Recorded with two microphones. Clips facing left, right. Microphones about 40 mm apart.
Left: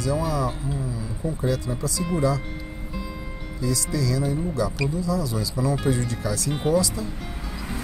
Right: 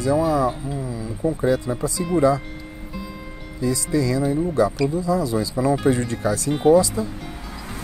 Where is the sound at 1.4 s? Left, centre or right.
Right.